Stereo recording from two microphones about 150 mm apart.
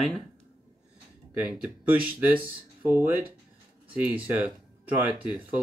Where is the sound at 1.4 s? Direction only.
10° right (ahead or behind).